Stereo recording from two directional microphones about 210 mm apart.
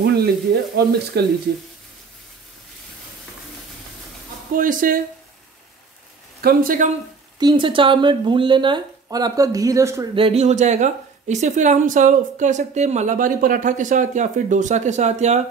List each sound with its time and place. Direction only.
0.0 s sizzle: 50° right (ahead or behind)
0.8 s speech: 50° right (ahead or behind)
4.6 s a woman's voice: 40° right (ahead or behind)
6.4 s speech: 40° right (ahead or behind)
7.3 s speech: 20° right (ahead or behind)
10.1 s a woman's voice: 30° right (ahead or behind)